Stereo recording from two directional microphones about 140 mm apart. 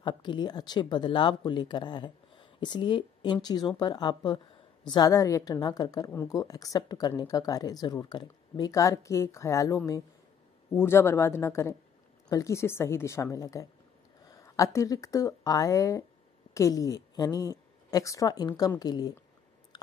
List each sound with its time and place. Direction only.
0.0 s a woman's voice: 35° left (ahead or behind)